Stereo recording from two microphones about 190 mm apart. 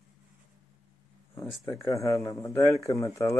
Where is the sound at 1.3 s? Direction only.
15° left (ahead or behind).